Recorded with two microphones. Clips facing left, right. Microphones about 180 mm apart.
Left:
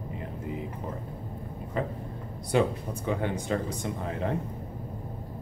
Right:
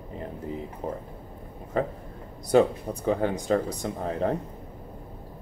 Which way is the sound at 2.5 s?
35° right (ahead or behind).